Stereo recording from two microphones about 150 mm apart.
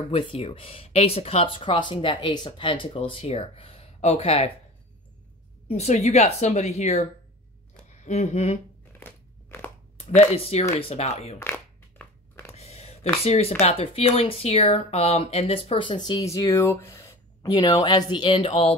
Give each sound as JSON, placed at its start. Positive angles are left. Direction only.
{"t": 0.1, "sound": "speech", "side_deg": 40}
{"t": 5.7, "sound": "a woman's voice", "side_deg": 45}
{"t": 9.0, "sound": "crunch", "side_deg": 15}
{"t": 10.0, "sound": "a woman's voice", "side_deg": 45}
{"t": 11.3, "sound": "a sound", "side_deg": 15}
{"t": 12.5, "sound": "a sound", "side_deg": 45}
{"t": 13.2, "sound": "a woman's voice", "side_deg": 45}